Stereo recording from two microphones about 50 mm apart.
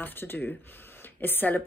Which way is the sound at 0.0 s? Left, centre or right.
Left.